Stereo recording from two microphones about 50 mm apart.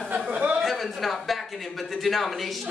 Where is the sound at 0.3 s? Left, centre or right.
Right.